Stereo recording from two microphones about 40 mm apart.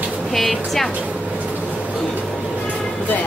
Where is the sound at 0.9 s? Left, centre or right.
Right.